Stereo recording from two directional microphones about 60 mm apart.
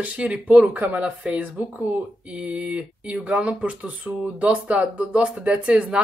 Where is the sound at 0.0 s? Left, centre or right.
Right.